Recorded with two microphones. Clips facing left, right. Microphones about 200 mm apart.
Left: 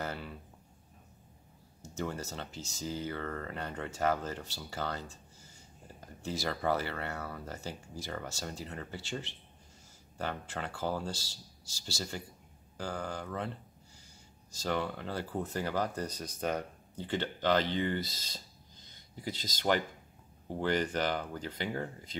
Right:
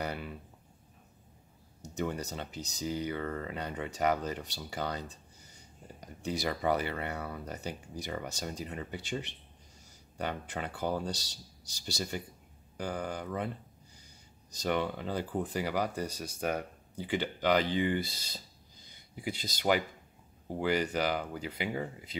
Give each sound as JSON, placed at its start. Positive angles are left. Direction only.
{"t": 0.0, "sound": "a sound", "side_deg": -15}
{"t": 1.8, "sound": "speech", "side_deg": -15}
{"t": 14.5, "sound": "speech", "side_deg": -20}